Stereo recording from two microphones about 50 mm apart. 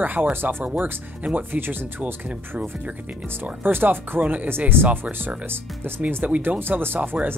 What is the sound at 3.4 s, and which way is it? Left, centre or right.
Speech, right.